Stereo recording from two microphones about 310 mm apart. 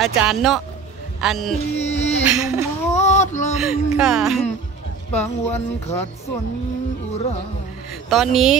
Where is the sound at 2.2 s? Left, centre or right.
Centre.